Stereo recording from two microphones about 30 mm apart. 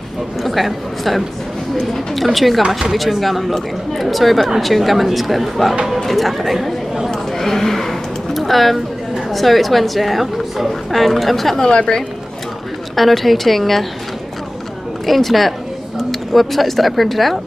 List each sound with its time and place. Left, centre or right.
0.4 s a woman's voice: centre
7.1 s a sound: centre
9.3 s a woman's voice: centre
11.7 s speech: left
12.9 s a woman's voice: centre
15.0 s a woman's voice: centre